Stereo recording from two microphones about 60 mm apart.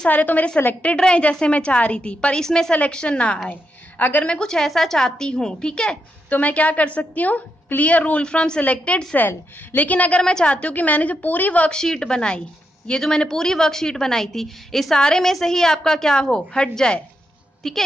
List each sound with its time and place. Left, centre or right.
0.1 s a woman's voice: left
4.3 s a woman's voice: centre
11.7 s a woman's voice: centre